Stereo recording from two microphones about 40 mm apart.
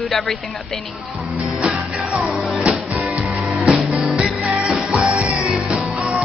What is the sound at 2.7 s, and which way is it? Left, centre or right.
Music, right.